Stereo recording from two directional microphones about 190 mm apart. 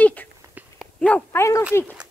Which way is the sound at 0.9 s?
5° left (ahead or behind).